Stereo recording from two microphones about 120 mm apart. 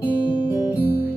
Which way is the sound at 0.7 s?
15° right (ahead or behind).